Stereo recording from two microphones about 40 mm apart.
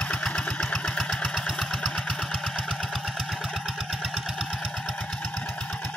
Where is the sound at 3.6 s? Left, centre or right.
Centre.